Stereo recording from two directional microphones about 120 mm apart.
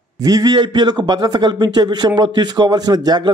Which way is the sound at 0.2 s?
30° right (ahead or behind).